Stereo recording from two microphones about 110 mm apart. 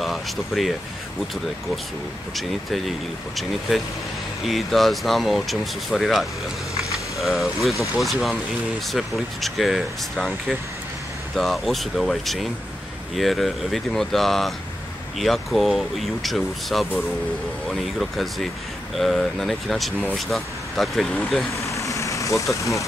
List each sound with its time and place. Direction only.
0.0 s speech: centre (ahead or behind)
2.3 s speech: centre (ahead or behind)
4.5 s speech: centre (ahead or behind)
6.8 s a sound: centre (ahead or behind)
8.0 s speech: centre (ahead or behind)
11.3 s speech: centre (ahead or behind)
21.5 s vehicle: 30° left (ahead or behind)